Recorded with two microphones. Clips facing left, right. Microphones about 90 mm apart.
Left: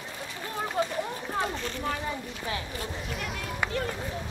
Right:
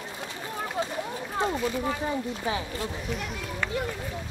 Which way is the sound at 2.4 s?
25° right (ahead or behind).